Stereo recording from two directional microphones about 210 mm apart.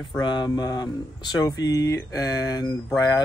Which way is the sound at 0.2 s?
20° left (ahead or behind).